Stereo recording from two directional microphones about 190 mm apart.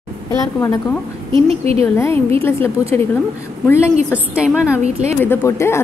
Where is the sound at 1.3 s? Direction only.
30° right (ahead or behind).